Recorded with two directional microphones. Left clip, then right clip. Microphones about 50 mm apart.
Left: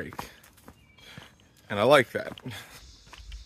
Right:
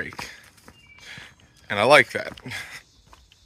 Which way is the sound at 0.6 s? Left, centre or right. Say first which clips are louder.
Right 7 dB; left.